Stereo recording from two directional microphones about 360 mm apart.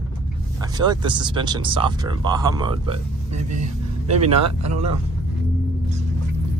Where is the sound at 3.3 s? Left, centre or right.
Right.